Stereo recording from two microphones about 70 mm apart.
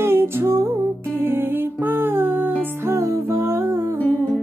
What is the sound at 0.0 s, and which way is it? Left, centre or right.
Music, right.